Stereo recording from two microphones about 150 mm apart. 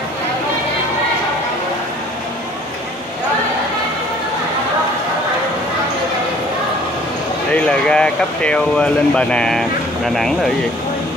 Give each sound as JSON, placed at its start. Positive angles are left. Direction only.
{"t": 7.5, "sound": "speech", "side_deg": 5}